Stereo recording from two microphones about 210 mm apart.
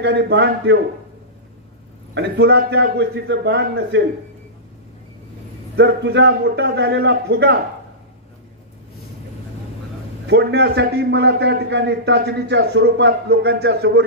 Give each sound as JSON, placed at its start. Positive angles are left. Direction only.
{"t": 0.0, "sound": "a man's voice", "side_deg": -55}
{"t": 2.1, "sound": "a man's voice", "side_deg": -50}
{"t": 5.8, "sound": "a man's voice", "side_deg": -55}
{"t": 10.2, "sound": "a man's voice", "side_deg": -50}